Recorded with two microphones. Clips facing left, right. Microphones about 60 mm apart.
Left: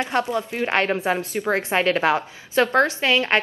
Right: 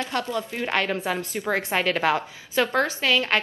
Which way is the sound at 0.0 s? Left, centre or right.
Left.